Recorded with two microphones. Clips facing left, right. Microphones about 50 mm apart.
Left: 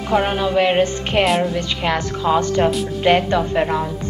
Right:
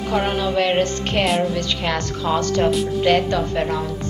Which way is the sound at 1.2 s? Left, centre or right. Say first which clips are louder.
Left 2 dB; centre.